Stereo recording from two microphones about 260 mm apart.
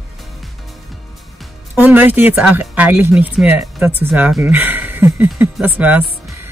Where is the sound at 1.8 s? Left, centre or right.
Centre.